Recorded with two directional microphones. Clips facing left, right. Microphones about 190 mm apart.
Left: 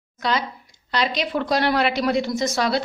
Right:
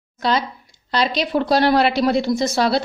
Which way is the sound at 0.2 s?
30° right (ahead or behind).